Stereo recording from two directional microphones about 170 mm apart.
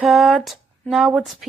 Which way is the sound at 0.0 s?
Centre (ahead or behind).